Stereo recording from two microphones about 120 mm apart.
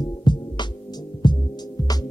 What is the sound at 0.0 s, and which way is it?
Music, 40° left (ahead or behind).